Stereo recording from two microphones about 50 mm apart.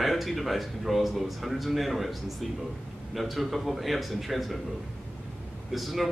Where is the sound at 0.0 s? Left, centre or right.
Centre.